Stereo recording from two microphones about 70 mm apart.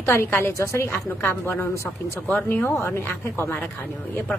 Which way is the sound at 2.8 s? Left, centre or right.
Left.